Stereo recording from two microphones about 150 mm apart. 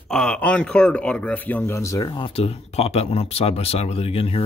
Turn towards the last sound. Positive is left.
turn(degrees=40)  # may be behind; listen again after turning